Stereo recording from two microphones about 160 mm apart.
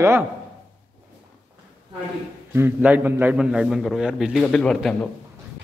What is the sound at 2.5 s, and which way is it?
A man's voice, 10° right (ahead or behind).